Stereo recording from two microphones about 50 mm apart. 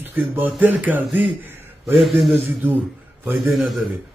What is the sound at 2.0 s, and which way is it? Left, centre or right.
Speech, centre.